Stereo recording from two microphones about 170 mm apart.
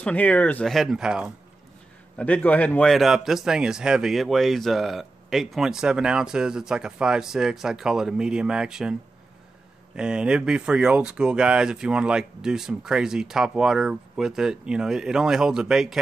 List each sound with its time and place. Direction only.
0.0 s a man's voice: 10° left (ahead or behind)
2.1 s a man's voice: 10° left (ahead or behind)
9.9 s a man's voice: 5° right (ahead or behind)